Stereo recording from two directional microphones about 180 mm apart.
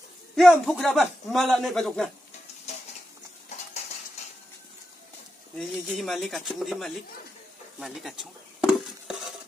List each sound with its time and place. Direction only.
0.4 s a man's voice: centre (ahead or behind)
3.5 s dishes: 40° left (ahead or behind)
5.6 s a man's voice: centre (ahead or behind)
7.8 s cutlery: centre (ahead or behind)